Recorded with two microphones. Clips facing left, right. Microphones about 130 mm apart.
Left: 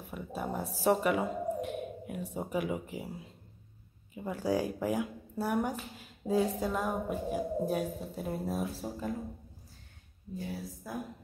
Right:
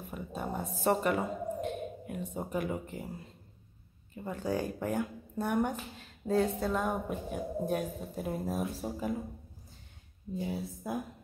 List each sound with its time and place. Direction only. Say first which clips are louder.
0.1 s speech: left 1 dB; centre (ahead or behind)
10.3 s speech: right 3 dB; 20° right (ahead or behind)